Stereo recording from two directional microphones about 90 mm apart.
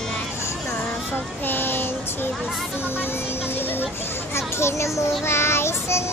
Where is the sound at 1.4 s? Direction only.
20° left (ahead or behind).